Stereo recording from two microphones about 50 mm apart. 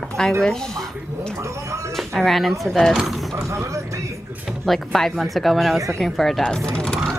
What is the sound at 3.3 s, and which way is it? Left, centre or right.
Speech, right.